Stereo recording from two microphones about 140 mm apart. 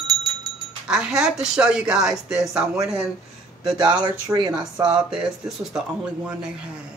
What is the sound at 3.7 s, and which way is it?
Speech, 30° right (ahead or behind).